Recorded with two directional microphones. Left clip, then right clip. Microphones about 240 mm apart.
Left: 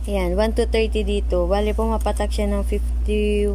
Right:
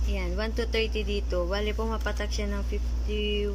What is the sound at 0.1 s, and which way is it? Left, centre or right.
Speech, left.